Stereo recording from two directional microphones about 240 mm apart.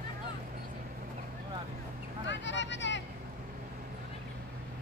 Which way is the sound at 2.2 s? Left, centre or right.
Left.